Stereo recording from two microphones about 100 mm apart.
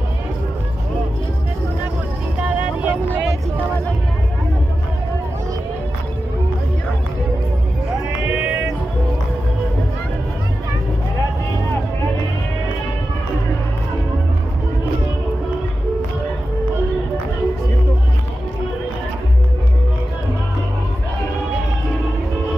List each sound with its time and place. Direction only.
2.4 s vehicle: 15° right (ahead or behind)